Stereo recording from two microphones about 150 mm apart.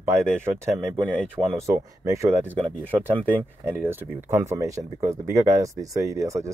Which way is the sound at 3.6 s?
15° right (ahead or behind).